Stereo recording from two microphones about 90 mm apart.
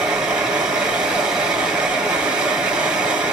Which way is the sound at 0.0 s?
10° right (ahead or behind).